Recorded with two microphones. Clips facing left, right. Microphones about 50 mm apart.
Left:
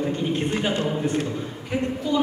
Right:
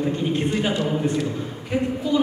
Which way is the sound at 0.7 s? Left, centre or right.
Left.